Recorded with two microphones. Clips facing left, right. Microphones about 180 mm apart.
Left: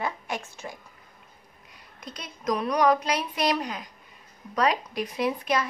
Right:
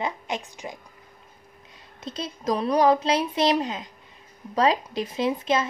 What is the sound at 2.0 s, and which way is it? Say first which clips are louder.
A woman's voice: right 3 dB; 25° right (ahead or behind).